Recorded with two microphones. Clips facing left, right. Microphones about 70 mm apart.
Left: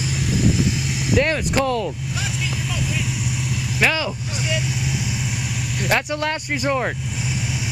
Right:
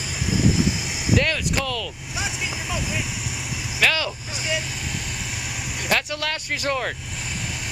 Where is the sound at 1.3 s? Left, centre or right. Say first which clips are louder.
Left 5 dB; left.